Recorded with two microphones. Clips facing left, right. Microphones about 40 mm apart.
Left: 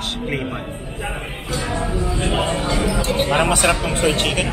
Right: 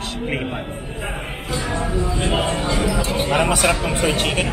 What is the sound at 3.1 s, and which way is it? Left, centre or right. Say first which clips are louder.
Speech: left 3 dB; centre.